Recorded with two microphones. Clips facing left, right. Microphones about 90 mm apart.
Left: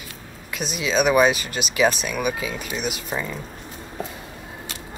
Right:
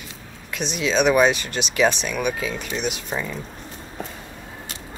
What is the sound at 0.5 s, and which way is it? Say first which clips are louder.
Speech: right 1 dB; 5° left (ahead or behind).